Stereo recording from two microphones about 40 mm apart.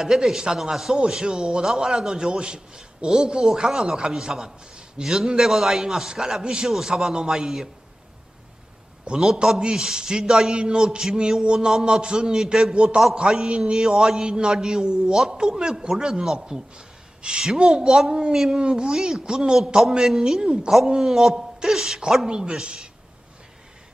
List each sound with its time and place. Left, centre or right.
0.0 s a man's voice: centre
1.2 s a man's voice: centre
9.2 s a man's voice: centre
10.5 s a man's voice: right
13.7 s a man's voice: centre
18.3 s a man's voice: centre
18.6 s a man's voice: centre